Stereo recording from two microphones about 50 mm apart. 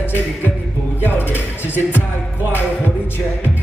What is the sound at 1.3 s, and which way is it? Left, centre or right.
Music, right.